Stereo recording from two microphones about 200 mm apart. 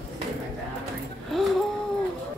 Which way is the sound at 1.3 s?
Centre (ahead or behind).